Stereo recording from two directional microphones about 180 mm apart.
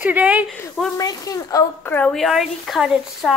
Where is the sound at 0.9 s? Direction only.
20° left (ahead or behind).